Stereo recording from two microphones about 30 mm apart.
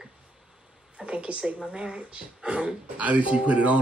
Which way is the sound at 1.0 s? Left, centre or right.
Right.